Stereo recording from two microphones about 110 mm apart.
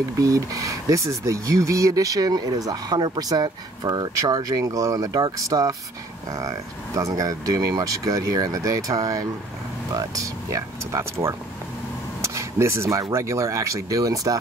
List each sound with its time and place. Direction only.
0.2 s speech: 30° right (ahead or behind)
7.0 s speech: 30° right (ahead or behind)
12.2 s a sound: 25° right (ahead or behind)
13.1 s speech: 25° right (ahead or behind)